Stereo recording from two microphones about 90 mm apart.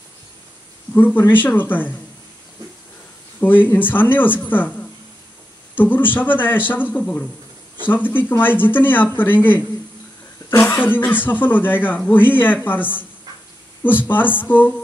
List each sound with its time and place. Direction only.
0.9 s speech: 20° left (ahead or behind)
3.3 s speech: 20° left (ahead or behind)
5.8 s speech: 20° left (ahead or behind)
10.7 s speech: 20° left (ahead or behind)